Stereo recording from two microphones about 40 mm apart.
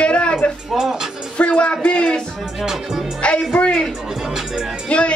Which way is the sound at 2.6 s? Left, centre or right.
Centre.